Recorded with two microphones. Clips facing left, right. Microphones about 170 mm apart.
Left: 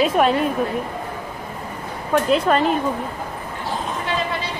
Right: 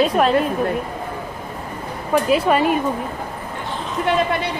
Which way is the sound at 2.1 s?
5° right (ahead or behind).